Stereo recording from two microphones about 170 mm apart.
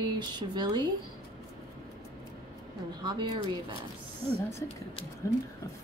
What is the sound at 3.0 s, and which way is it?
Speech, 25° right (ahead or behind).